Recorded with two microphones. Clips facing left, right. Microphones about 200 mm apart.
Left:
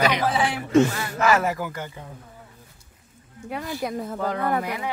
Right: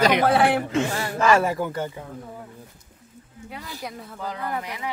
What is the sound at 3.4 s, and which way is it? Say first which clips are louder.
Speech: left 7 dB; 55° left (ahead or behind).